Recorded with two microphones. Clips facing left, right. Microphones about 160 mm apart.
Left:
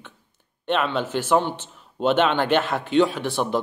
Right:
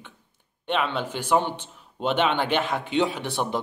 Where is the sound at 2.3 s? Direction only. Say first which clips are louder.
Left 3 dB; 50° left (ahead or behind).